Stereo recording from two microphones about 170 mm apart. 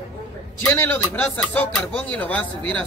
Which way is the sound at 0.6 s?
15° left (ahead or behind).